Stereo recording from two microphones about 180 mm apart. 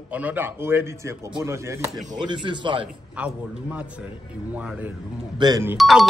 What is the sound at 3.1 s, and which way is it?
A man's voice, 5° right (ahead or behind).